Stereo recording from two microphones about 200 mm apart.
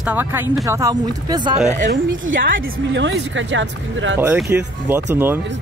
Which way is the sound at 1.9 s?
70° right (ahead or behind).